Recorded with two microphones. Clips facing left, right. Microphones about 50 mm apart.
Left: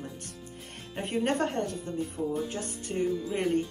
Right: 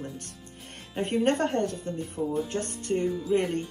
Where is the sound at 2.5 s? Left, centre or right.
Right.